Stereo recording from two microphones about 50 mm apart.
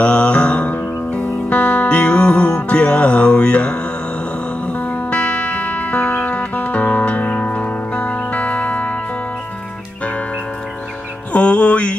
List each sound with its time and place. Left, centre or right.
0.0 s music: left
4.7 s music: left
11.3 s music: left